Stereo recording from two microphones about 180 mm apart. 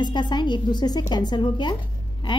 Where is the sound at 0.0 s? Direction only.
25° left (ahead or behind).